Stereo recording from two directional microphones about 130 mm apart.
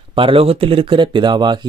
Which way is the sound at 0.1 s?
45° right (ahead or behind).